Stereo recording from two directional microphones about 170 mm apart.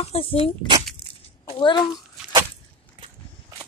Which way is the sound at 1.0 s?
Centre (ahead or behind).